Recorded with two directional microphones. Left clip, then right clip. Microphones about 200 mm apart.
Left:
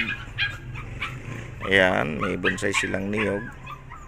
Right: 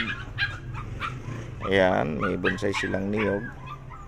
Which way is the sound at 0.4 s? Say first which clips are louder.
Left 2 dB; 40° right (ahead or behind).